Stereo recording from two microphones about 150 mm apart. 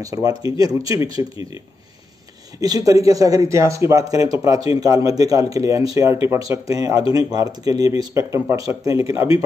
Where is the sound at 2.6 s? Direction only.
25° right (ahead or behind).